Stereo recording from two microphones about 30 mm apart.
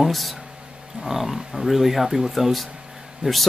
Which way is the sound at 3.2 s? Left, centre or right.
Right.